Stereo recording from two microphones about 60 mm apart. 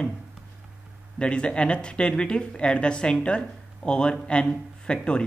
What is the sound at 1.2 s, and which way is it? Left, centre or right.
Speech, centre.